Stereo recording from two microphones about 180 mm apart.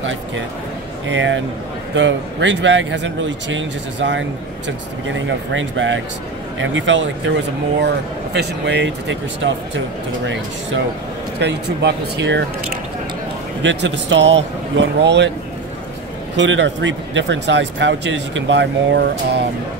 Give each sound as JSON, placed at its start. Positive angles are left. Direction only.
{"t": 1.0, "sound": "speech", "side_deg": -90}
{"t": 7.8, "sound": "speech", "side_deg": -75}
{"t": 10.2, "sound": "speech", "side_deg": -90}
{"t": 11.3, "sound": "speech", "side_deg": -70}
{"t": 13.6, "sound": "speech", "side_deg": -90}
{"t": 16.3, "sound": "speech", "side_deg": -90}